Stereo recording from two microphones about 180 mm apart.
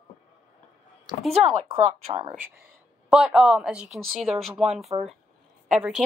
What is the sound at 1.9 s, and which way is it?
Speech, 30° right (ahead or behind).